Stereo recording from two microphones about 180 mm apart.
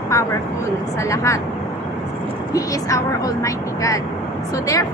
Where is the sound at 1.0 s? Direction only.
15° left (ahead or behind).